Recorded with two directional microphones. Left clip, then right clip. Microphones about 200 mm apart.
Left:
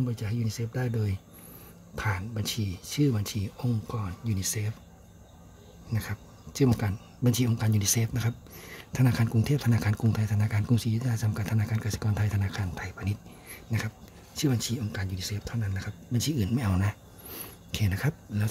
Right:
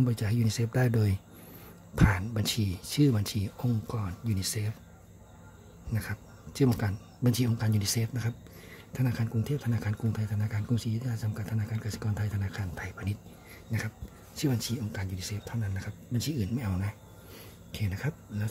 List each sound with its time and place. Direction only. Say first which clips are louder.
0.0 s speech: right 3 dB; 15° right (ahead or behind)
5.9 s speech: left 1 dB; centre (ahead or behind)